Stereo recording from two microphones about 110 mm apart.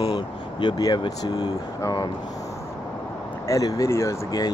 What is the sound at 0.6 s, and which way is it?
Speech, 40° left (ahead or behind).